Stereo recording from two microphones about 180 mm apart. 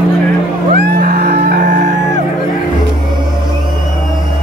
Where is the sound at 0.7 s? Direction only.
55° right (ahead or behind).